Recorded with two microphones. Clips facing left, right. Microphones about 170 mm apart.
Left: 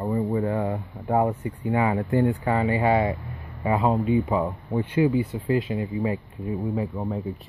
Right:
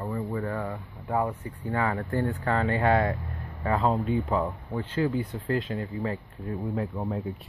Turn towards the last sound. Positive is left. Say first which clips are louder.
# left 2 dB
turn(degrees=0)  # may be behind; listen again after turning